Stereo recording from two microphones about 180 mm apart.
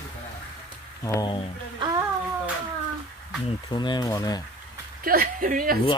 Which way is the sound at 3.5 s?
25° left (ahead or behind).